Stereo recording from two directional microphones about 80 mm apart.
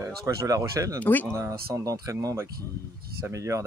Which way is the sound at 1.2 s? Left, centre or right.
Right.